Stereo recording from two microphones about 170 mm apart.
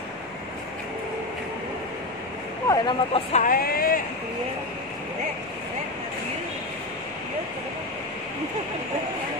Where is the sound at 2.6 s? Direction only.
25° left (ahead or behind).